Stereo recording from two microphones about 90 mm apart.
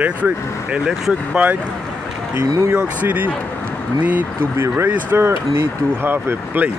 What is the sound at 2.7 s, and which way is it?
Speech, 15° right (ahead or behind).